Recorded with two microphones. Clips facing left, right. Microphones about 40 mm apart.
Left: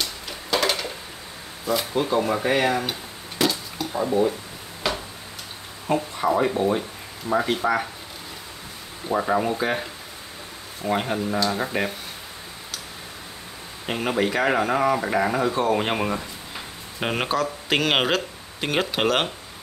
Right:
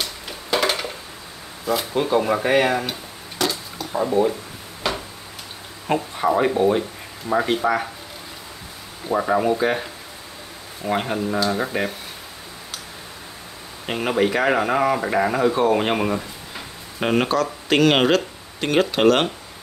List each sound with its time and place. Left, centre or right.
0.0 s a sound: centre
1.7 s speech: centre
3.9 s speech: centre
4.8 s a sound: centre
6.1 s speech: centre
9.1 s speech: centre
13.8 s speech: centre